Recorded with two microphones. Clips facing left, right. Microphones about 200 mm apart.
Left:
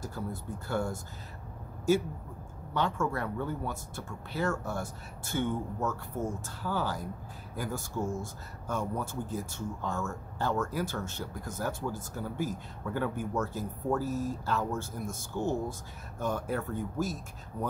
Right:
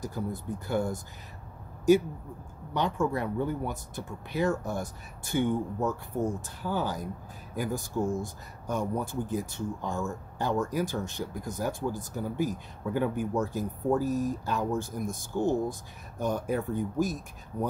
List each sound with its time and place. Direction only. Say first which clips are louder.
0.0 s speech: right 4 dB; 15° right (ahead or behind)
2.7 s speech: right 3 dB; 15° right (ahead or behind)